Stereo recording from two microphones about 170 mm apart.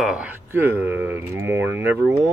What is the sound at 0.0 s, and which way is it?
Speech, 5° right (ahead or behind).